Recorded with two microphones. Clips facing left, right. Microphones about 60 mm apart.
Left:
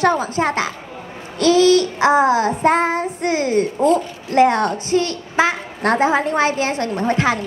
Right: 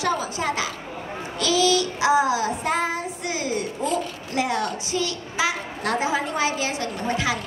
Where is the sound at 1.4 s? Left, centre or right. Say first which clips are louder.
Left 8 dB; left.